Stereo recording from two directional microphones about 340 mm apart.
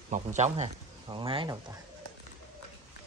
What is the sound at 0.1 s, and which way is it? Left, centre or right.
Speech, right.